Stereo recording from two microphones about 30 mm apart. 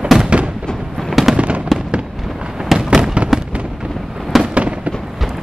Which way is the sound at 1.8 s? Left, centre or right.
Right.